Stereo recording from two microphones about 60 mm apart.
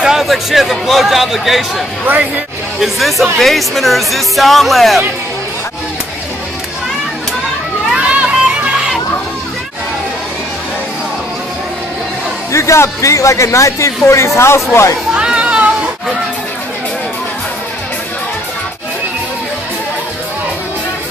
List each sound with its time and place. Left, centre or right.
0.0 s a man's voice: centre
2.0 s speech: right
2.8 s speech: centre
7.9 s crowd: centre
12.5 s speech: left
15.1 s a sound: centre